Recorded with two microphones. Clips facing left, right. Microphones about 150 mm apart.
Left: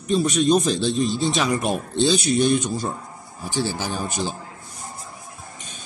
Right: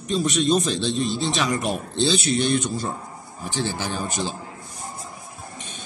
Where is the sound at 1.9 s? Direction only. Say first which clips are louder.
Left 2 dB; 10° left (ahead or behind).